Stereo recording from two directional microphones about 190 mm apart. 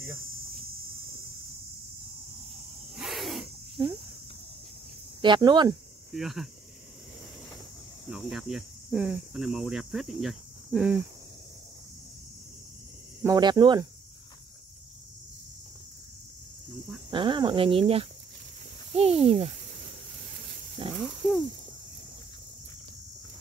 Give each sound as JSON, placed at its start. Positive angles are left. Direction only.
{"t": 3.0, "sound": "a sound", "side_deg": 0}
{"t": 5.2, "sound": "speech", "side_deg": -25}
{"t": 6.1, "sound": "cricket", "side_deg": 0}
{"t": 8.1, "sound": "cricket", "side_deg": 0}
{"t": 13.2, "sound": "speech", "side_deg": -20}
{"t": 17.1, "sound": "speech", "side_deg": -25}
{"t": 20.8, "sound": "speech", "side_deg": -30}